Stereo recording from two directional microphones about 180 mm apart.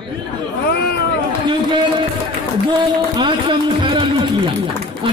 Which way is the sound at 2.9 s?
25° right (ahead or behind).